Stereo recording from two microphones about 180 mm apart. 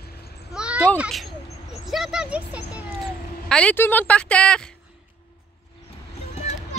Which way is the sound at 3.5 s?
5° left (ahead or behind).